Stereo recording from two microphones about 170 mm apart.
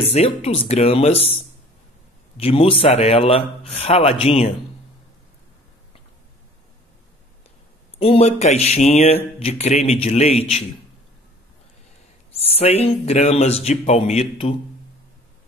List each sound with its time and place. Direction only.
0.1 s speech: 40° left (ahead or behind)
2.3 s speech: 35° left (ahead or behind)
8.0 s speech: 35° left (ahead or behind)
12.3 s speech: 35° left (ahead or behind)